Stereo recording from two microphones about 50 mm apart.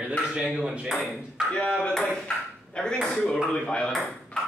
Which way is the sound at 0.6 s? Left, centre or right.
Centre.